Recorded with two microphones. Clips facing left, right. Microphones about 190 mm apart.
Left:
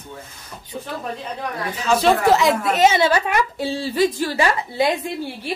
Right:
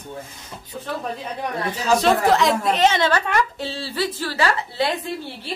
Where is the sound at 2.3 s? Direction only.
Centre (ahead or behind).